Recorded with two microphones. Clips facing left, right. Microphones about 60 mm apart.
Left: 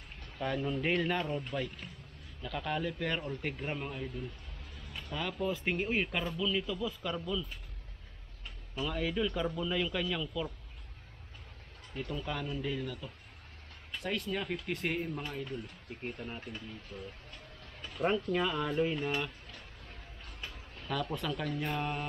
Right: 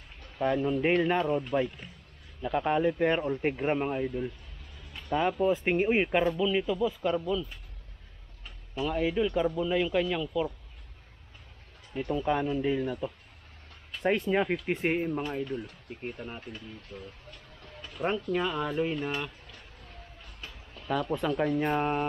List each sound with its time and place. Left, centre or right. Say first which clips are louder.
0.4 s speech: right 7 dB; centre
2.4 s speech: right 9 dB; right
8.7 s speech: right 6 dB; centre
11.9 s speech: right 9 dB; centre
15.6 s speech: right 3 dB; centre
17.9 s speech: right 1 dB; centre
20.8 s speech: right 6 dB; centre
21.3 s speech: right 8 dB; right